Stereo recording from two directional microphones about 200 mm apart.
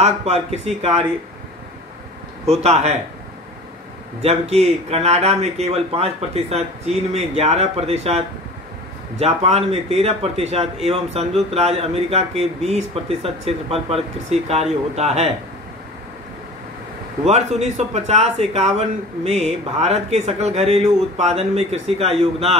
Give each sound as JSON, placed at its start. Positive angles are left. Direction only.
{"t": 0.0, "sound": "speech", "side_deg": -30}
{"t": 2.4, "sound": "speech", "side_deg": -35}
{"t": 4.2, "sound": "speech", "side_deg": -30}
{"t": 9.2, "sound": "speech", "side_deg": -30}
{"t": 17.2, "sound": "speech", "side_deg": -35}